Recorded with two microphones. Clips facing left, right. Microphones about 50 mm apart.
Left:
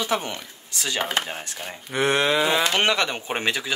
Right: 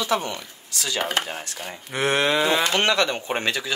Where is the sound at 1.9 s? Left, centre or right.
Centre.